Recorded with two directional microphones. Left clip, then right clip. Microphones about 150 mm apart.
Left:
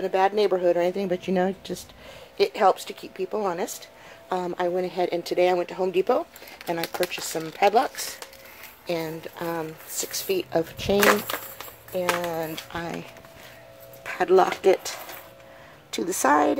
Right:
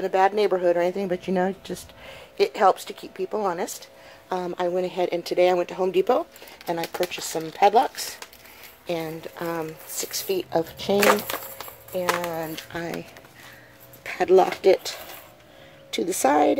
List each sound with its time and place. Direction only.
0.0 s speech: 15° right (ahead or behind)
6.6 s speech: 5° right (ahead or behind)
9.4 s speech: 10° right (ahead or behind); by 12.9 s 5° left (ahead or behind)
14.1 s speech: 10° right (ahead or behind)